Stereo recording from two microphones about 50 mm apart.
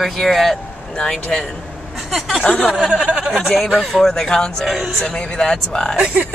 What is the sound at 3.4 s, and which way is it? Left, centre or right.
Speech, centre.